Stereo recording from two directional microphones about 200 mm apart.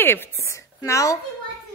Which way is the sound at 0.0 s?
10° left (ahead or behind).